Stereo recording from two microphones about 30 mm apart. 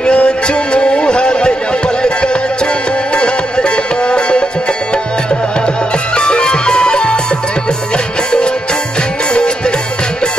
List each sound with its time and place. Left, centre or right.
0.0 s music: left
6.1 s music: left
9.3 s music: left